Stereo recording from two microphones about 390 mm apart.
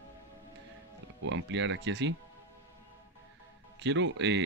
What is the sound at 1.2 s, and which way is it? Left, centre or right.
Speech, right.